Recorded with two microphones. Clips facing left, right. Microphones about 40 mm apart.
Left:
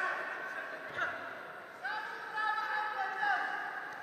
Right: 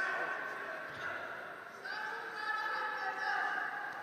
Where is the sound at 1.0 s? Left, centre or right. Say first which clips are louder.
Left 5 dB; left.